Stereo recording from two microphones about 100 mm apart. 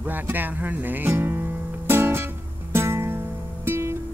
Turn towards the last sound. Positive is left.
turn(degrees=-25)  # may be behind; listen again after turning